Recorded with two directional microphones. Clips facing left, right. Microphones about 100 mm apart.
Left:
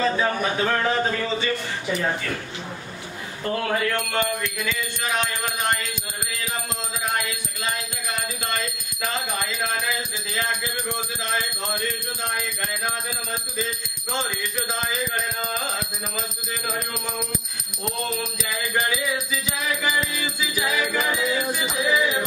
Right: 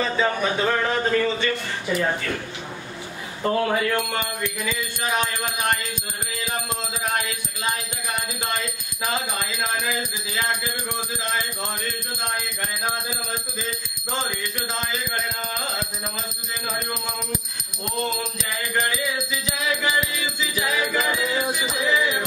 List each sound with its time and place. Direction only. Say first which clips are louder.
0.2 s speech: right 1 dB; centre (ahead or behind)
3.4 s speech: right 3 dB; 15° right (ahead or behind)
20.5 s speech: even; centre (ahead or behind)